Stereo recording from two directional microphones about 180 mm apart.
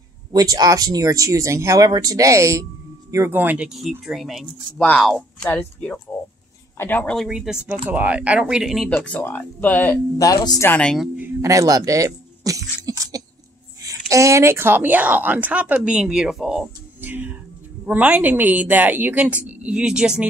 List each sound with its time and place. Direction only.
0.3 s speech: 20° right (ahead or behind); by 7.2 s 10° left (ahead or behind)
7.2 s speech: 5° right (ahead or behind)
8.9 s speech: 10° left (ahead or behind)
10.7 s speech: 5° left (ahead or behind)
11.1 s a woman's voice: 20° right (ahead or behind)